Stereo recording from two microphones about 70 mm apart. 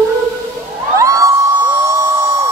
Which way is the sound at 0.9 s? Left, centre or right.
Right.